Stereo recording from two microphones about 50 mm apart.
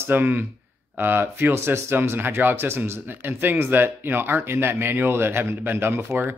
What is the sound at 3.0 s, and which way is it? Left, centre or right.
Speech, right.